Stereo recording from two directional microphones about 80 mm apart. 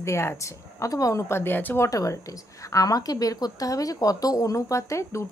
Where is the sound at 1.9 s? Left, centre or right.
Left.